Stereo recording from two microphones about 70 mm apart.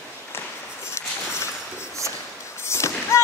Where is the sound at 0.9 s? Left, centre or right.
Left.